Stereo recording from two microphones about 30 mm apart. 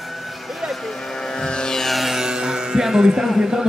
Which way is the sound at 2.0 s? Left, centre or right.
Centre.